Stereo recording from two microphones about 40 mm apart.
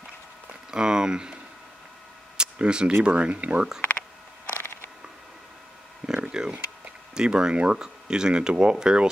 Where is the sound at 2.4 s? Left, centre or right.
Right.